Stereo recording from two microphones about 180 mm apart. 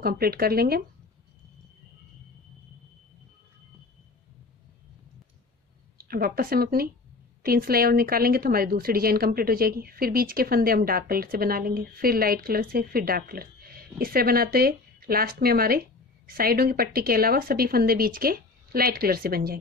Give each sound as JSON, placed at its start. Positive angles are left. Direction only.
{"t": 0.0, "sound": "a woman's voice", "side_deg": -55}
{"t": 5.9, "sound": "a woman's voice", "side_deg": -55}